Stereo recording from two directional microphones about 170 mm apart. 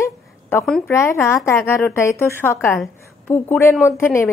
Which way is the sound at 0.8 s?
15° left (ahead or behind).